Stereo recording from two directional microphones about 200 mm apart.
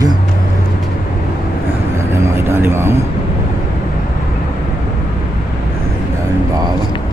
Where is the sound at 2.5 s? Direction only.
10° right (ahead or behind).